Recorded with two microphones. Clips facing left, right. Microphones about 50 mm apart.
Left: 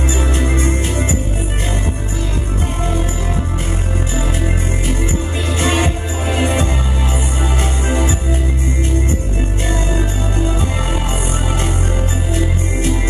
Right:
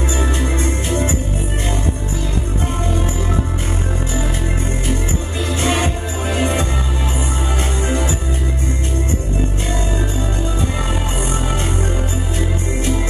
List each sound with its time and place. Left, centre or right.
5.6 s music: left